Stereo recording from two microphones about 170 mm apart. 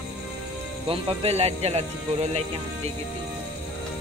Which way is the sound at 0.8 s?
30° right (ahead or behind).